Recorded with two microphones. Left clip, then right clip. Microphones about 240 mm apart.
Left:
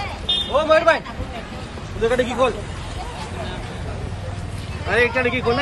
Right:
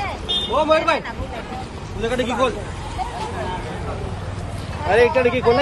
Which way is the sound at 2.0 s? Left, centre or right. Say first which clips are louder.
Left 2 dB; centre.